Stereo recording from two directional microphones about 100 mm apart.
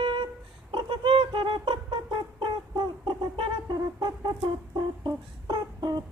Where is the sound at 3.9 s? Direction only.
40° right (ahead or behind).